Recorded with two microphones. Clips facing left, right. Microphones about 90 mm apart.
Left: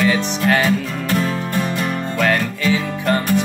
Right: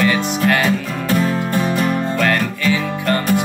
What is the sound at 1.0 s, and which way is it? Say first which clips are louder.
Music: right 4 dB; 20° right (ahead or behind).